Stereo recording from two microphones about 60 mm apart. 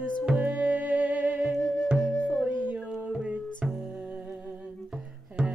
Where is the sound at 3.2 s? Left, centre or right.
Centre.